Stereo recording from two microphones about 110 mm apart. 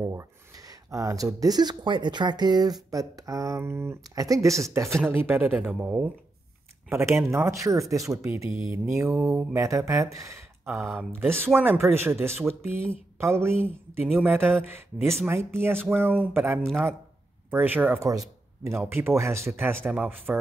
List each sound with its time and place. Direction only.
0.0 s speech: 30° right (ahead or behind)
15.2 s speech: 20° right (ahead or behind)
18.0 s speech: 30° right (ahead or behind); by 20.3 s 15° right (ahead or behind)